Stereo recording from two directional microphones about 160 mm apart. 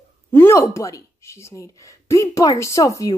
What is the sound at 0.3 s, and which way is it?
Speech, 15° left (ahead or behind).